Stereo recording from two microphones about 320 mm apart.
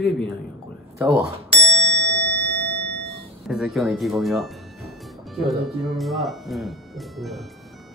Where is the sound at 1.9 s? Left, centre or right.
Left.